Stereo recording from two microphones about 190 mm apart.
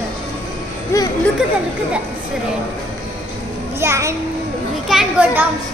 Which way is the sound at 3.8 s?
15° right (ahead or behind).